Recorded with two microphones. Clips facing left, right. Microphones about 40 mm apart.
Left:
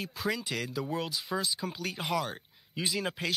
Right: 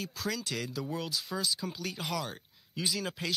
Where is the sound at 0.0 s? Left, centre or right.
Centre.